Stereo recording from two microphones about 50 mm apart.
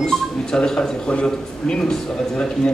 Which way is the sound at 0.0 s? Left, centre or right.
Centre.